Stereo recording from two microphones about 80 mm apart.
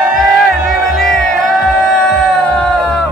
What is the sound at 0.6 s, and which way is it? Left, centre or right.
Music, centre.